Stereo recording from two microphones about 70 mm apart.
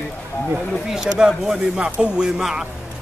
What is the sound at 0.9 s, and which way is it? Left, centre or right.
A man's voice, centre.